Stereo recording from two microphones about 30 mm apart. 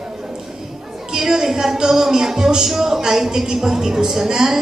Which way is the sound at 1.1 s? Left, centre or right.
Centre.